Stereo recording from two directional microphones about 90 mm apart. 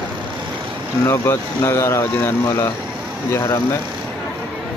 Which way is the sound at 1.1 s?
30° left (ahead or behind).